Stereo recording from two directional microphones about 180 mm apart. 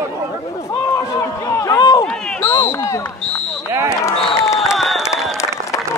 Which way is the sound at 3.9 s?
15° left (ahead or behind).